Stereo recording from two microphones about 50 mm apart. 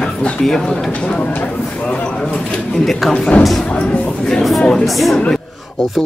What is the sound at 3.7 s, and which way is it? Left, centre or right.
Speech, left.